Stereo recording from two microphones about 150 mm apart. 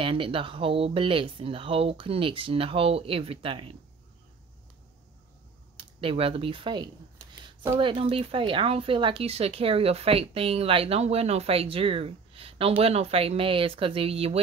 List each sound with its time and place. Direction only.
0.0 s speech: 35° right (ahead or behind)
5.9 s speech: 35° right (ahead or behind)